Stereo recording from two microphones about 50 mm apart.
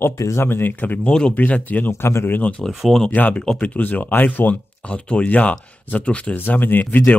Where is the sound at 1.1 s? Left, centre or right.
Centre.